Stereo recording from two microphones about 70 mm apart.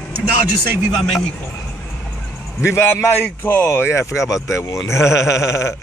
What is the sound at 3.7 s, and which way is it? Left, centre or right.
Speech, left.